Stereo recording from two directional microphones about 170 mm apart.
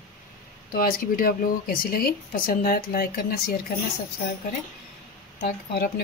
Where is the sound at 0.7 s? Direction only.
60° left (ahead or behind).